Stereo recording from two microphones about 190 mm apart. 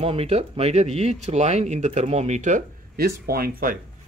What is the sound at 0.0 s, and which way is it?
Speech, 30° right (ahead or behind).